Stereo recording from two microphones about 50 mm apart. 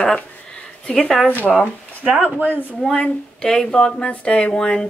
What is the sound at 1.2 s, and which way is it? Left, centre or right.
Speech, left.